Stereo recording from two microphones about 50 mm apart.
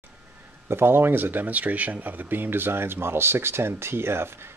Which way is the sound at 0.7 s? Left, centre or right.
Right.